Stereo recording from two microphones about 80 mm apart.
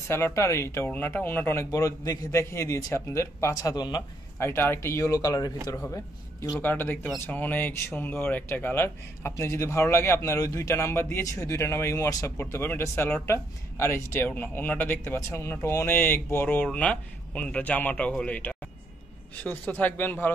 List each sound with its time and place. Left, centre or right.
0.1 s a man's voice: left
0.8 s a man's voice: left
4.4 s speech: left
4.7 s speech: left
6.6 s speech: left
10.7 s a man's voice: left
12.4 s a man's voice: left
14.2 s speech: left
15.1 s a man's voice: left